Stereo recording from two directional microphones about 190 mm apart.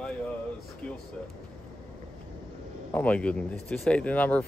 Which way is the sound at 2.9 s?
5° left (ahead or behind).